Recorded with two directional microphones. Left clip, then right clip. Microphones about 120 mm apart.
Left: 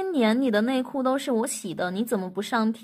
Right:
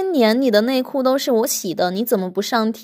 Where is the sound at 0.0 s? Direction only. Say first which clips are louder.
Right 7 dB; 40° right (ahead or behind).